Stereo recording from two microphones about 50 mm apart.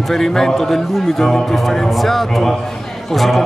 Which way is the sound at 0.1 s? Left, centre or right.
Centre.